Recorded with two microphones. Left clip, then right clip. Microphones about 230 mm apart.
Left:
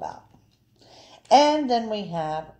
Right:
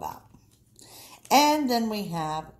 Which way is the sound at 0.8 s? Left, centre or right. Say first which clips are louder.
Left 5 dB; right.